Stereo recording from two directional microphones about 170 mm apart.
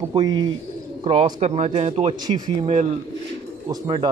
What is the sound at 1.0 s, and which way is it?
Speech, 35° right (ahead or behind).